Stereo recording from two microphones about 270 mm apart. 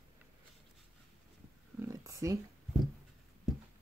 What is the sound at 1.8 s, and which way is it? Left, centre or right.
Speech, centre.